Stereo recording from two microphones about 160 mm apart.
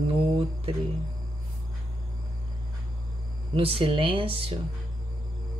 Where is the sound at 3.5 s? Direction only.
35° right (ahead or behind).